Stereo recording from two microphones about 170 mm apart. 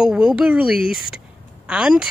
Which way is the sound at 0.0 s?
5° right (ahead or behind).